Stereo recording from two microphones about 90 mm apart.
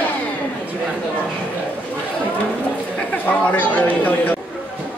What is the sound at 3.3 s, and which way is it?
A man's voice, 15° left (ahead or behind).